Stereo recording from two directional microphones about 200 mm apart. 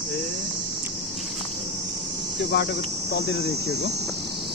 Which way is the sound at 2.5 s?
55° left (ahead or behind).